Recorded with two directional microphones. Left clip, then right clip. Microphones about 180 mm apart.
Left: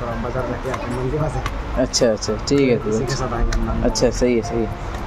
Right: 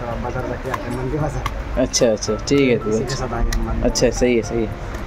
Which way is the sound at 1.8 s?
5° right (ahead or behind).